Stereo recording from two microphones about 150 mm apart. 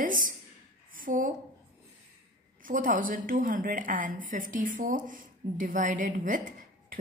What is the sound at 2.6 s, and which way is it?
Speech, 65° right (ahead or behind).